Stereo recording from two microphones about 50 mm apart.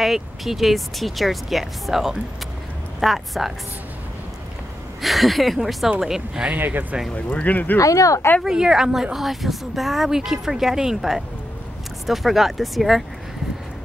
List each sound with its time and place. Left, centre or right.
0.0 s speech: centre
5.0 s a woman's voice: centre
6.5 s speech: right
7.2 s speech: left
7.9 s speech: left
8.5 s a woman's voice: centre